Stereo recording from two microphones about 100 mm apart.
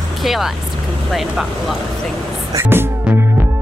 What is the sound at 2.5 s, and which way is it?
Music, 25° right (ahead or behind).